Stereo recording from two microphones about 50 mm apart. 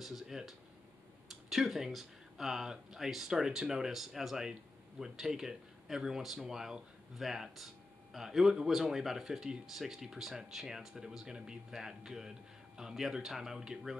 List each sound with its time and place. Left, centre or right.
0.0 s speech: centre